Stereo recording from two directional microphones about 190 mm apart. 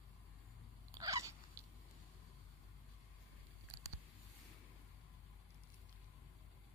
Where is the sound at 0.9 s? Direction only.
15° right (ahead or behind).